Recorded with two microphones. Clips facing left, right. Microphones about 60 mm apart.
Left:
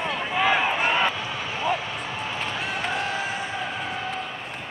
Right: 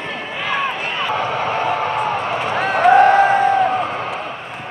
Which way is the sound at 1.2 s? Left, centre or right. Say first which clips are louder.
Right 11 dB; right.